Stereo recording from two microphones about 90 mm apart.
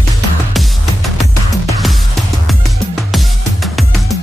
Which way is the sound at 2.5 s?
Centre (ahead or behind).